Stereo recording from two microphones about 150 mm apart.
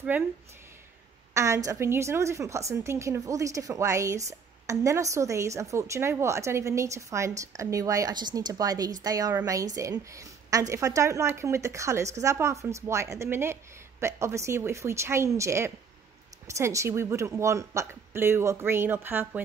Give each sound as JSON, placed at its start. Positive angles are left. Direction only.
{"t": 1.3, "sound": "a woman's voice", "side_deg": -20}